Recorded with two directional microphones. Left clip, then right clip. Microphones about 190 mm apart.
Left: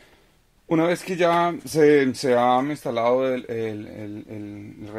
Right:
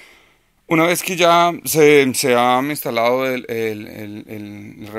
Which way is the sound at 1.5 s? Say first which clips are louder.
Right 6 dB; 50° right (ahead or behind).